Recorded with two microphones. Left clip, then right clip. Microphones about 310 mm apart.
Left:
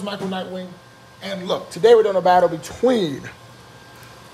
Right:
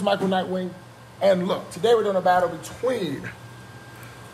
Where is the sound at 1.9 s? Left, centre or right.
Left.